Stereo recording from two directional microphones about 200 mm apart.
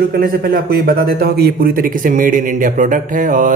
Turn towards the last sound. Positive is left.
turn(degrees=-40)  # may be behind; listen again after turning